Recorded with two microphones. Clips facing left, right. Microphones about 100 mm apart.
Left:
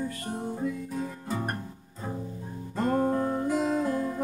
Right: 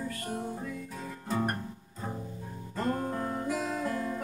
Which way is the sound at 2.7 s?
20° left (ahead or behind).